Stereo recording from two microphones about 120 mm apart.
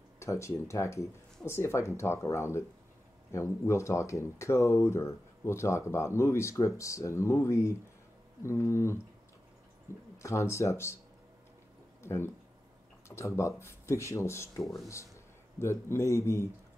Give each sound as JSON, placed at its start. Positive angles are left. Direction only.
{"t": 0.2, "sound": "speech", "side_deg": 25}
{"t": 10.1, "sound": "speech", "side_deg": 25}
{"t": 12.0, "sound": "speech", "side_deg": 20}
{"t": 15.6, "sound": "speech", "side_deg": 20}